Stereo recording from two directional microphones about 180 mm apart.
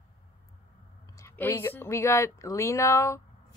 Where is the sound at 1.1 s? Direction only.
15° left (ahead or behind).